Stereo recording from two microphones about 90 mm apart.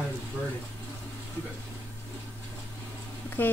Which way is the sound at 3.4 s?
20° left (ahead or behind).